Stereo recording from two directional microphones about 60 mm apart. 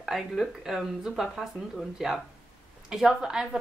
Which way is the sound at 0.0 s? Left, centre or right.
Centre.